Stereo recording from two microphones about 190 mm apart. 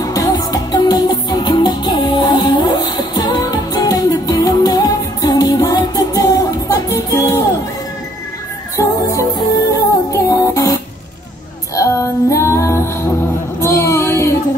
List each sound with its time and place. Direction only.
0.0 s music: 20° left (ahead or behind)
8.7 s music: 20° left (ahead or behind)
11.7 s female singing: 15° left (ahead or behind)
13.6 s music: 15° left (ahead or behind)